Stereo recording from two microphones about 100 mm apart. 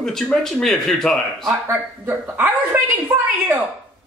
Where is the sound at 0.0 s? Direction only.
5° left (ahead or behind).